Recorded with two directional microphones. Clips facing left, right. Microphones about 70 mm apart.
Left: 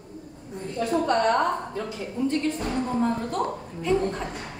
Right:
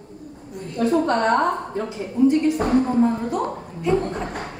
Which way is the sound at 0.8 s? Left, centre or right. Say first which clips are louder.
Right 7 dB; right.